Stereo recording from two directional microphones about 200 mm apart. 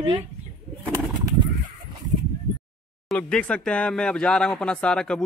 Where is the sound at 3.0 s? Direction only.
5° left (ahead or behind).